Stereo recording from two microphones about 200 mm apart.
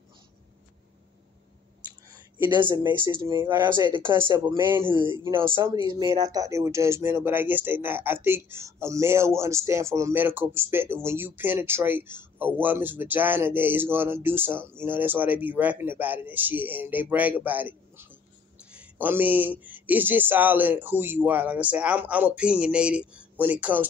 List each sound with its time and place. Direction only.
2.0 s a sound: 10° right (ahead or behind)
2.7 s speech: 20° right (ahead or behind)
3.8 s speech: 25° right (ahead or behind)
4.1 s speech: 15° right (ahead or behind)